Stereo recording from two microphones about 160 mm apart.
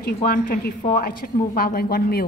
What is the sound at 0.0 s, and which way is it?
A woman's voice, 65° left (ahead or behind).